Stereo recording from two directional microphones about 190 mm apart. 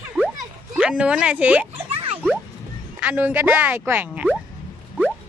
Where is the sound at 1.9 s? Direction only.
30° right (ahead or behind).